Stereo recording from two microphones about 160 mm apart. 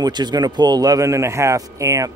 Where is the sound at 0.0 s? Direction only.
25° right (ahead or behind).